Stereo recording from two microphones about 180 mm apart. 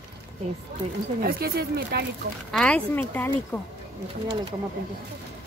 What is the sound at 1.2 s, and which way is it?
Speech, 60° right (ahead or behind).